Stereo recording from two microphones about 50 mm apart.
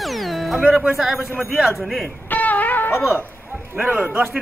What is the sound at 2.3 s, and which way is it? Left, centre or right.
Music, left.